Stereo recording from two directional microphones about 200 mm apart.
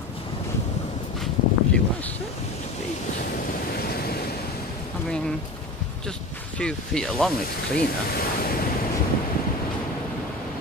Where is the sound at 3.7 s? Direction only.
50° left (ahead or behind).